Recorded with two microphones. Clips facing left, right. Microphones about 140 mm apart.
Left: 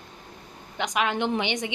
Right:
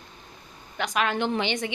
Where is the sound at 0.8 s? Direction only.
15° left (ahead or behind).